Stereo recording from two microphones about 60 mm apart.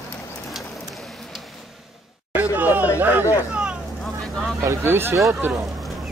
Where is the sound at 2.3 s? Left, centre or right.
Right.